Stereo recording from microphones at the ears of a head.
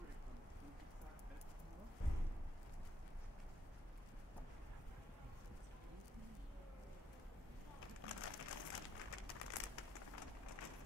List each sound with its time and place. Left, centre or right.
7.8 s crumpling: left